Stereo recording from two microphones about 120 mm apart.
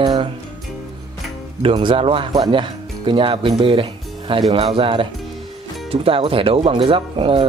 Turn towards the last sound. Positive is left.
turn(degrees=-45)  # may be behind; listen again after turning